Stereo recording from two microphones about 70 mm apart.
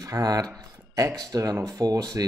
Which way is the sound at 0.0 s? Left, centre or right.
Right.